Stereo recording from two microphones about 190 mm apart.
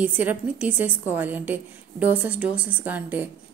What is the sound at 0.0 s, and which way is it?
A woman's voice, 10° right (ahead or behind).